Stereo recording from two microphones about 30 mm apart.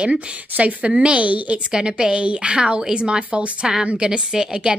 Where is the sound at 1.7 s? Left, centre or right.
Right.